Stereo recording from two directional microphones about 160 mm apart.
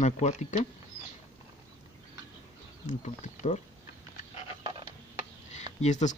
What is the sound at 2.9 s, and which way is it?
Speech, 45° left (ahead or behind).